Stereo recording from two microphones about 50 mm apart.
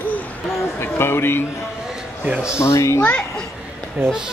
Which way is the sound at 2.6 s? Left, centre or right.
Left.